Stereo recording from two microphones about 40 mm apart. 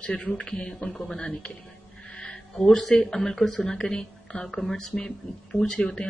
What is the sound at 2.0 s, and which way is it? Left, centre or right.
Owl, left.